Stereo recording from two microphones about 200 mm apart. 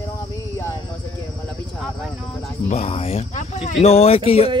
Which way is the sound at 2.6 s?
35° left (ahead or behind).